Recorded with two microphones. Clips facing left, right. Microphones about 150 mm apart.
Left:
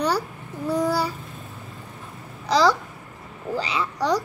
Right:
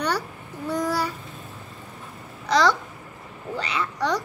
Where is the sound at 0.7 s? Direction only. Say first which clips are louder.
Left 2 dB; 30° left (ahead or behind).